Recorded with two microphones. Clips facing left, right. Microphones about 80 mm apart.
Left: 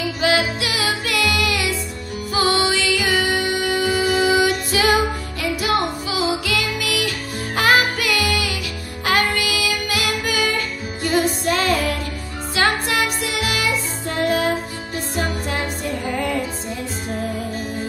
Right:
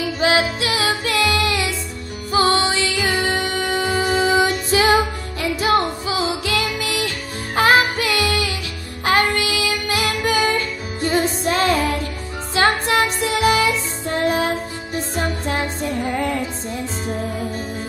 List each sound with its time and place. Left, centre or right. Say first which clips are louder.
0.2 s music: right 1 dB; right
4.3 s female singing: right 1 dB; right
5.4 s music: right 3 dB; right